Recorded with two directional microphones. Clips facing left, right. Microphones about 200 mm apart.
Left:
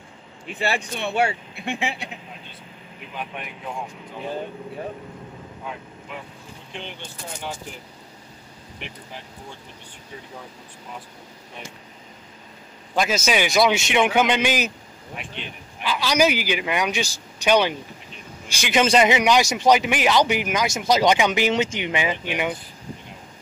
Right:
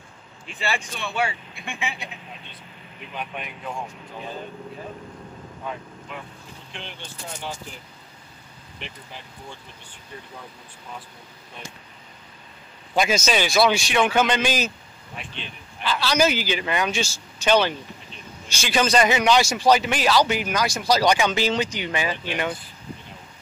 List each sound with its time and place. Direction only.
0.6 s speech: 60° left (ahead or behind)
12.9 s speech: centre (ahead or behind)
15.8 s speech: 10° left (ahead or behind)